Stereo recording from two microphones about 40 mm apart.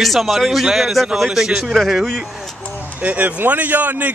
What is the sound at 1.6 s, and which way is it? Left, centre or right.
Speech, centre.